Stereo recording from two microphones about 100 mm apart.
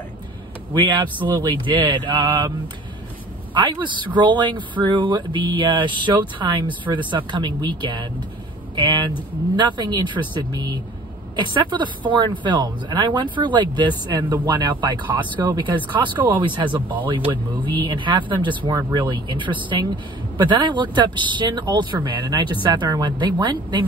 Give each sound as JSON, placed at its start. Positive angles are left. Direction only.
{"t": 0.7, "sound": "speech", "side_deg": -55}
{"t": 3.5, "sound": "speech", "side_deg": -50}